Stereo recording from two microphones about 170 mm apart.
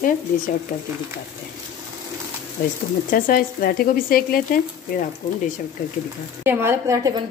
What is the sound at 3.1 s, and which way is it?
Speech, 55° left (ahead or behind).